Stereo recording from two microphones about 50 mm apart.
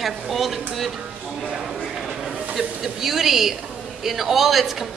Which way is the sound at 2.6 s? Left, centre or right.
Centre.